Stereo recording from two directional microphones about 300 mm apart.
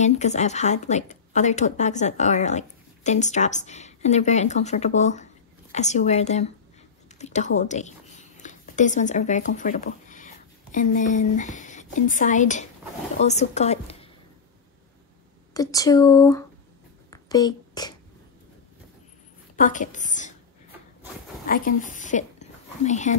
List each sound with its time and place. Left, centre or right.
0.0 s a woman's voice: left
15.5 s speech: centre
17.1 s a sound: centre
19.5 s a woman's voice: left
21.5 s speech: left